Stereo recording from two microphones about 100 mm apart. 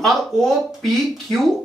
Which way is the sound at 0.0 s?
Centre (ahead or behind).